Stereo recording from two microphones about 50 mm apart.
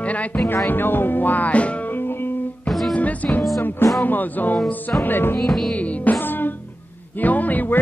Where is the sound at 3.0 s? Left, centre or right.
Left.